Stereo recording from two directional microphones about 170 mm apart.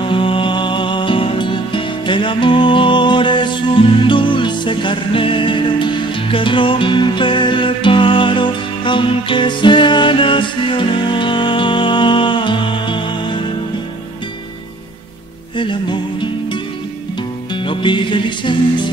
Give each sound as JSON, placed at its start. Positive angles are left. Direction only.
{"t": 0.0, "sound": "music", "side_deg": 30}
{"t": 15.5, "sound": "music", "side_deg": 30}
{"t": 17.6, "sound": "music", "side_deg": 30}